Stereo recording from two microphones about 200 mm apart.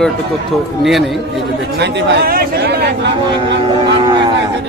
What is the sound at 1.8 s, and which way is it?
Speech, 60° right (ahead or behind).